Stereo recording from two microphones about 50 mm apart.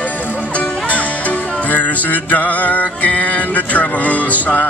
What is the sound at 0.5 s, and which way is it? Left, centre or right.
Music, left.